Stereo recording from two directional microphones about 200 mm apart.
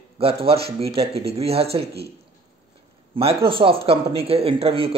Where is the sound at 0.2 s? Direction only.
30° right (ahead or behind).